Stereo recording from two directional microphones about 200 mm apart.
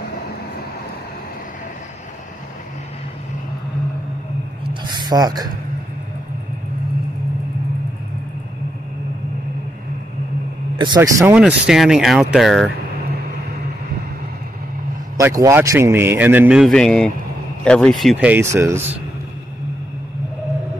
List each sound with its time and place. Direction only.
4.8 s a sound: 20° right (ahead or behind)
11.0 s speech: 10° right (ahead or behind)
15.1 s speech: 15° right (ahead or behind)